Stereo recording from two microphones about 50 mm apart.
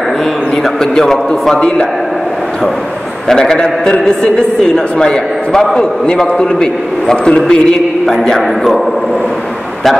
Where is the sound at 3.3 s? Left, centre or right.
Centre.